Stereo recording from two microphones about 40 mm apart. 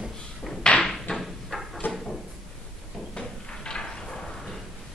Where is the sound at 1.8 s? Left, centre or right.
Left.